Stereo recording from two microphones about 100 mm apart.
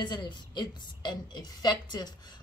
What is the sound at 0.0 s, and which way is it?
A woman's voice, 50° left (ahead or behind).